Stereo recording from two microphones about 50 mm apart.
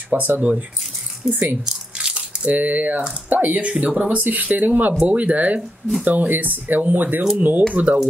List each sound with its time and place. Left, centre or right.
0.4 s speech: right
1.3 s speech: right
1.7 s speech: centre; by 8.0 s right